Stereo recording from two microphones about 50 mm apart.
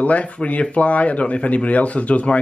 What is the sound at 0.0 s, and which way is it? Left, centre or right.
Speech, left.